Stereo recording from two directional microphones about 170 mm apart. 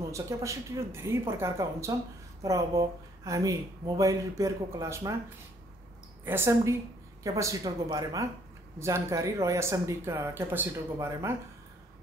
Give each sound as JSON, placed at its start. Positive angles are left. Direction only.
{"t": 0.0, "sound": "speech", "side_deg": -20}
{"t": 6.2, "sound": "speech", "side_deg": -15}